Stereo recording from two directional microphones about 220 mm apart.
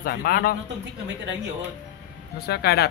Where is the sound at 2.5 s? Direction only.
45° left (ahead or behind).